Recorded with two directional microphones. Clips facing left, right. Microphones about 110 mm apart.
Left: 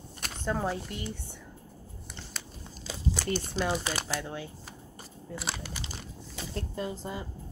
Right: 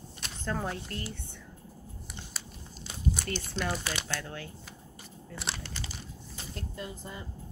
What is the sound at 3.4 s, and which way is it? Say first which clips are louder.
Speech: left 3 dB; 25° left (ahead or behind).